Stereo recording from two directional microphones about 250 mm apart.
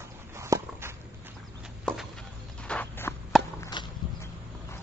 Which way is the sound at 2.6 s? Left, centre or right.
Centre.